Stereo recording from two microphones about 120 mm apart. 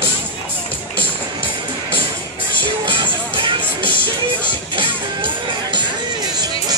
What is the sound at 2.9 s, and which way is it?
Music, 45° right (ahead or behind).